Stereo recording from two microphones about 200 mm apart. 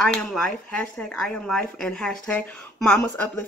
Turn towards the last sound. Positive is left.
turn(degrees=5)  # may be behind; listen again after turning